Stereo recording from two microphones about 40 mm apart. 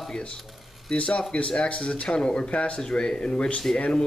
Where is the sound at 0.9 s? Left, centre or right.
Left.